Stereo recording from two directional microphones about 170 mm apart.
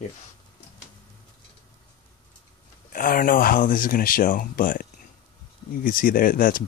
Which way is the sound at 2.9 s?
55° left (ahead or behind).